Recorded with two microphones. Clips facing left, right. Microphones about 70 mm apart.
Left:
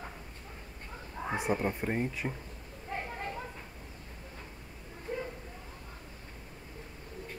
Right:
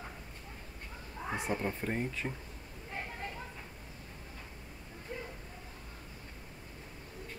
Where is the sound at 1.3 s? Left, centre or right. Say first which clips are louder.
Left 4 dB; centre.